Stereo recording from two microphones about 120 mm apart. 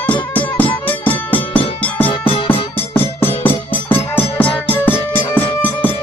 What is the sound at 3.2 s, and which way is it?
Music, 15° left (ahead or behind).